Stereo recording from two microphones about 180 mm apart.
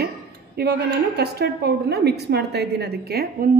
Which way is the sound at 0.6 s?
65° right (ahead or behind).